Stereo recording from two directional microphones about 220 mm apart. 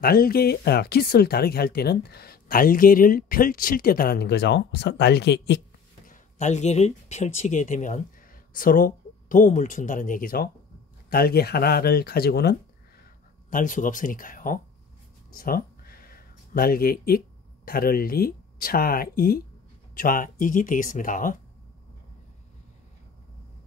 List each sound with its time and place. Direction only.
0.0 s speech: 40° left (ahead or behind)
6.0 s speech: 35° left (ahead or behind)
13.5 s speech: 35° left (ahead or behind)
15.3 s a sound: 40° left (ahead or behind)
17.6 s speech: 40° left (ahead or behind)